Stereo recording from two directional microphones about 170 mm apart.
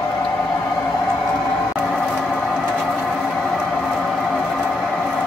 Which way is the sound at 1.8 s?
5° left (ahead or behind).